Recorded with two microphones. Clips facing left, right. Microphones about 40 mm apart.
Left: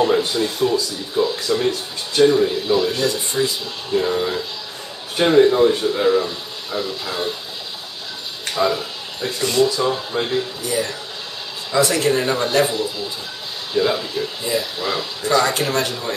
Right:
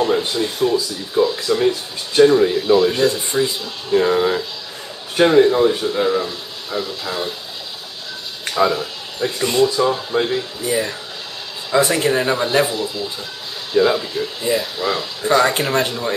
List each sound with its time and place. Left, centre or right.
0.3 s speech: centre
2.9 s speech: right
5.1 s speech: centre
8.5 s speech: centre
9.4 s speech: centre
9.7 s speech: centre
10.6 s speech: right
12.6 s speech: centre
15.2 s speech: centre